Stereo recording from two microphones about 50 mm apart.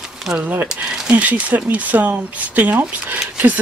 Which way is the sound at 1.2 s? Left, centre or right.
Right.